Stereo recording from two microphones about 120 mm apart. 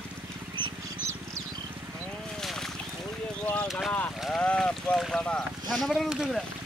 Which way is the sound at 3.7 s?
Centre (ahead or behind).